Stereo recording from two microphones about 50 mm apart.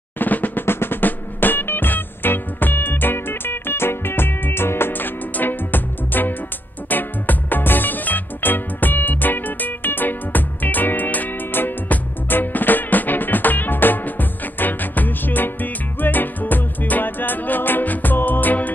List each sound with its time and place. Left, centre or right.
0.2 s drum roll: left
0.7 s music: left